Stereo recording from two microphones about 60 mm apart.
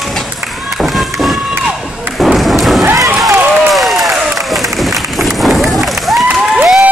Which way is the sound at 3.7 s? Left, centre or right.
Centre.